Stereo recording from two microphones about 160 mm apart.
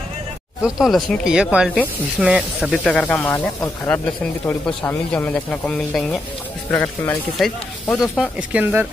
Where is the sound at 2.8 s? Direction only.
10° left (ahead or behind).